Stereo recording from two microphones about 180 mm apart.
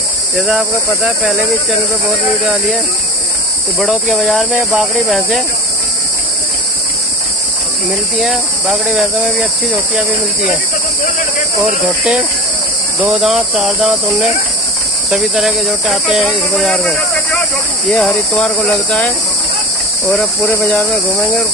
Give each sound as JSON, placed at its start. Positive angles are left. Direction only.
{"t": 0.4, "sound": "speech", "side_deg": 0}
{"t": 3.8, "sound": "speech", "side_deg": 0}
{"t": 8.2, "sound": "speech", "side_deg": 0}
{"t": 13.0, "sound": "speech", "side_deg": -5}
{"t": 15.0, "sound": "speech", "side_deg": 0}